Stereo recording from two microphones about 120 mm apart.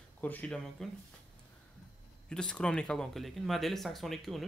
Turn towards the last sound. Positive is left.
turn(degrees=0)  # may be behind; listen again after turning